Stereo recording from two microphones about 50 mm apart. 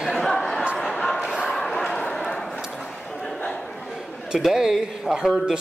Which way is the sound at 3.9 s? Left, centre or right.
Centre.